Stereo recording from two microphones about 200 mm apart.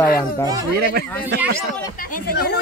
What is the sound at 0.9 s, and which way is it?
Speech, 55° right (ahead or behind).